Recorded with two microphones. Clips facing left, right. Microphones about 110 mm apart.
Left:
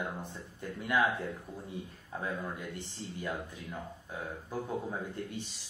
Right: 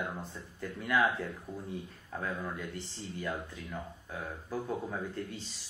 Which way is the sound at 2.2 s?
20° left (ahead or behind).